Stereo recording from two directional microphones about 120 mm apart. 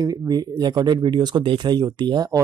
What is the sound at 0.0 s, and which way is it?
Speech, 30° right (ahead or behind).